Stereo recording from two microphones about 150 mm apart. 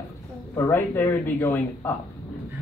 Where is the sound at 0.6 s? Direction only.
15° left (ahead or behind).